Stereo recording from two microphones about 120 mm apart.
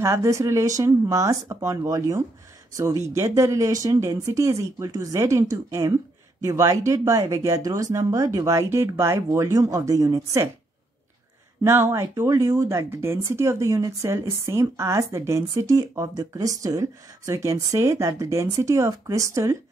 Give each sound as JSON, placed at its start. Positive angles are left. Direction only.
{"t": 0.0, "sound": "speech", "side_deg": -25}
{"t": 11.6, "sound": "speech", "side_deg": -25}